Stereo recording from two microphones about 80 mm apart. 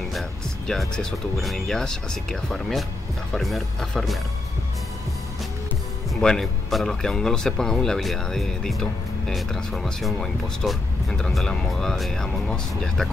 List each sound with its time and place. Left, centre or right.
0.1 s speech: centre
6.2 s speech: centre